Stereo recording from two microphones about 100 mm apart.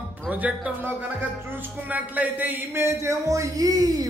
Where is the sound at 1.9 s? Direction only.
15° right (ahead or behind).